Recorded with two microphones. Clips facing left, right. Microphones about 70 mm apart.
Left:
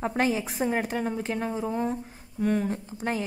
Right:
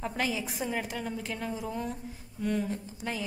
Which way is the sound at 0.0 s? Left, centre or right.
Left.